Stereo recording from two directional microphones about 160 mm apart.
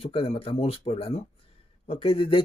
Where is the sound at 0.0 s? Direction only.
35° left (ahead or behind).